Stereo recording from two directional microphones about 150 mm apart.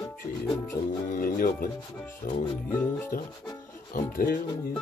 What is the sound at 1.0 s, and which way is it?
Music, 65° left (ahead or behind).